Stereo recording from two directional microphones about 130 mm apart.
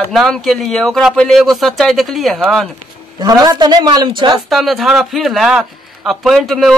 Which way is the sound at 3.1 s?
30° right (ahead or behind).